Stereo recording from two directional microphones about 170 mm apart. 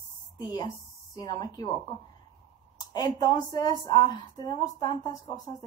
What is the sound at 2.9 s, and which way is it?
A woman's voice, 25° left (ahead or behind).